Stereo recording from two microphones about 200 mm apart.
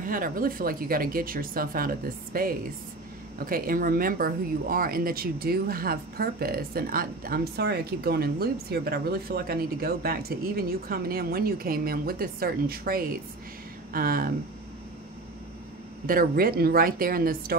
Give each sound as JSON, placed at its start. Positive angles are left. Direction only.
{"t": 0.0, "sound": "speech", "side_deg": -45}
{"t": 16.1, "sound": "speech", "side_deg": -45}